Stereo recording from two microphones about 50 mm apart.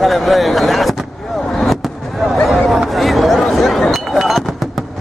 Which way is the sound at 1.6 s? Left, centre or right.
Centre.